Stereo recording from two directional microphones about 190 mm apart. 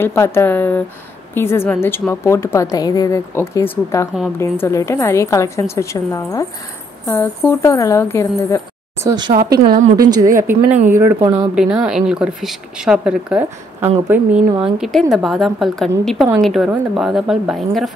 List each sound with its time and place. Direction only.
0.0 s a woman's voice: 10° left (ahead or behind)
9.0 s speech: 20° right (ahead or behind)
9.3 s speech: 50° right (ahead or behind)
10.4 s speech: 10° right (ahead or behind)
14.6 s speech: centre (ahead or behind)